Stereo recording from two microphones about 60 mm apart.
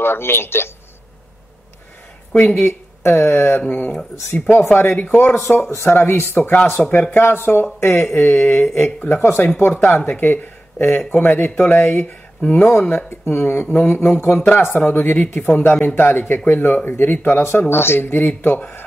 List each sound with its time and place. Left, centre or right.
0.0 s speech: left
2.3 s speech: left